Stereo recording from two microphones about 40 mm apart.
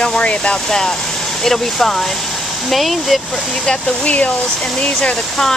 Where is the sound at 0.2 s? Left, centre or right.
Left.